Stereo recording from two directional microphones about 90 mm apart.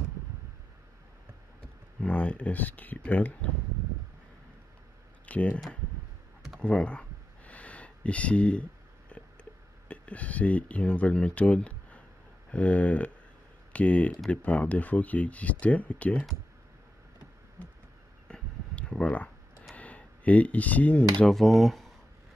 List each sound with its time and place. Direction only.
2.0 s speech: 15° left (ahead or behind)
5.2 s speech: 15° left (ahead or behind)
6.6 s a sound: 15° left (ahead or behind)
12.4 s speech: 15° left (ahead or behind)
18.3 s a sound: 10° left (ahead or behind)
21.2 s speech: centre (ahead or behind)